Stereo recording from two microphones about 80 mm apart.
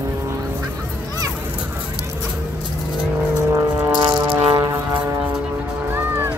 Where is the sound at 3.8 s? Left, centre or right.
Right.